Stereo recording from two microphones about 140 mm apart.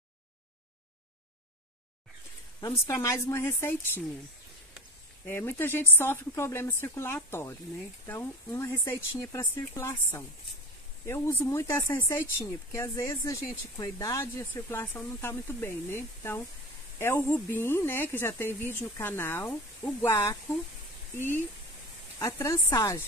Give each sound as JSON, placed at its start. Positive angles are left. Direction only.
{"t": 2.6, "sound": "speech", "side_deg": 20}
{"t": 5.2, "sound": "speech", "side_deg": 15}